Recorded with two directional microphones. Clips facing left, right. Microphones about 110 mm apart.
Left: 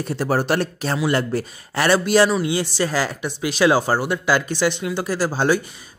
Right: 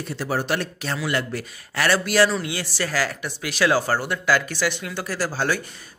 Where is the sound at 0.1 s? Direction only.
45° left (ahead or behind).